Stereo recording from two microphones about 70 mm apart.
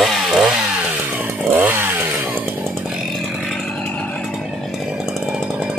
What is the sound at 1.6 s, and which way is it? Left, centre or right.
Chainsaw, right.